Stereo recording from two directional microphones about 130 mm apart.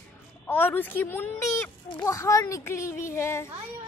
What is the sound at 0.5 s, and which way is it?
A woman's voice, 15° left (ahead or behind).